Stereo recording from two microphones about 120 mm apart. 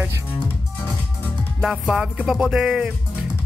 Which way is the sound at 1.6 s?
5° right (ahead or behind).